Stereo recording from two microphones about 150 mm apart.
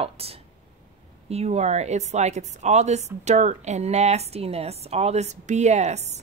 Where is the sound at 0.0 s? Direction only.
40° right (ahead or behind).